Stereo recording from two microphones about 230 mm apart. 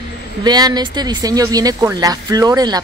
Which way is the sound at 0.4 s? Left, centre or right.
Centre.